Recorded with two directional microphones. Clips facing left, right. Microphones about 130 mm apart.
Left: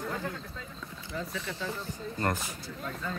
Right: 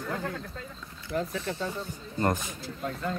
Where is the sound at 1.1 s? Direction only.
60° right (ahead or behind).